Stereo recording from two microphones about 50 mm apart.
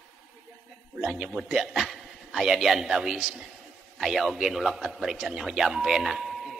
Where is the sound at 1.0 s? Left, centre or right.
Centre.